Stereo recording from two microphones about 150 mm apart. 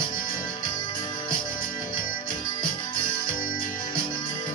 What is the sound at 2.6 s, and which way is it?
Music, 35° left (ahead or behind).